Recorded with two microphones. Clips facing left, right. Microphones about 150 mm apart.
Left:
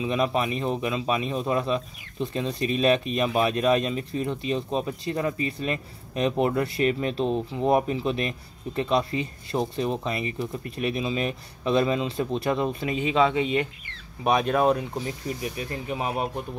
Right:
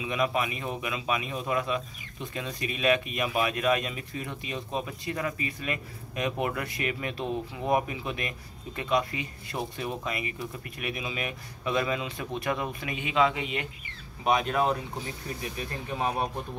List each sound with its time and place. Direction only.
0.0 s speech: 30° left (ahead or behind)